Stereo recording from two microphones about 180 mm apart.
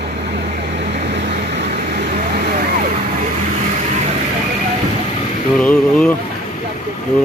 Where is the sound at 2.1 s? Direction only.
45° right (ahead or behind).